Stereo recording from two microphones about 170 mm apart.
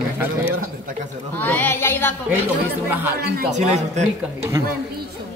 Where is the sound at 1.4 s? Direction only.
10° left (ahead or behind).